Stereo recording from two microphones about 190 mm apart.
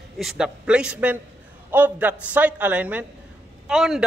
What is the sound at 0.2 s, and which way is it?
A man's voice, 5° right (ahead or behind).